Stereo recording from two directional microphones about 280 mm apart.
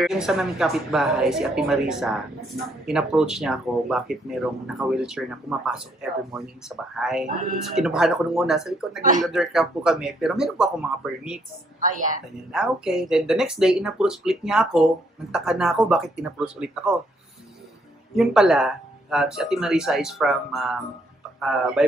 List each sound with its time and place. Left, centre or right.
0.0 s speech: centre
7.0 s speech: centre
11.8 s a woman's voice: right
12.5 s speech: centre
18.1 s speech: centre